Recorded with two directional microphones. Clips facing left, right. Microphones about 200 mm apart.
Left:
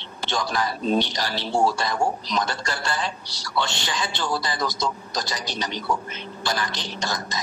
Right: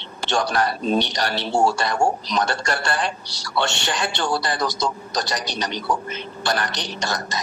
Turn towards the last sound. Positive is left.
turn(degrees=-70)  # may be behind; listen again after turning